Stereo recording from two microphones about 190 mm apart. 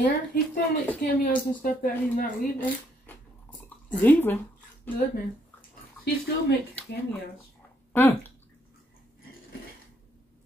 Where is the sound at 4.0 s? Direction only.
10° left (ahead or behind).